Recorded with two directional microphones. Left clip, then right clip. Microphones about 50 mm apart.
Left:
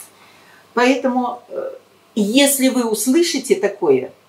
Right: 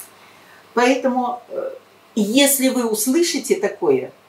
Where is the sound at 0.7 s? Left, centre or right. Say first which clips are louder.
Left 1 dB; centre.